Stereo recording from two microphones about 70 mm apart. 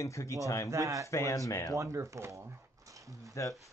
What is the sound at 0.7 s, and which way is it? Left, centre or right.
Speech, right.